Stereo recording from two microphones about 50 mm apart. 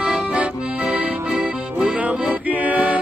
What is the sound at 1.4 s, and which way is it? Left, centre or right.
Music, right.